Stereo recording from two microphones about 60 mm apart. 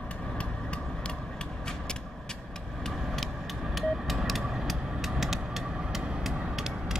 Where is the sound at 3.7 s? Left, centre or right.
Centre.